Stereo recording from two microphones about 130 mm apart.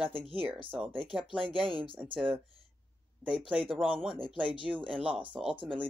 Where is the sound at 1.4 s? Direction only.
45° right (ahead or behind).